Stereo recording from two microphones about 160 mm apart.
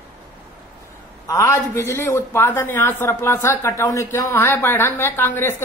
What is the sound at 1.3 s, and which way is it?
A man's voice, 20° left (ahead or behind).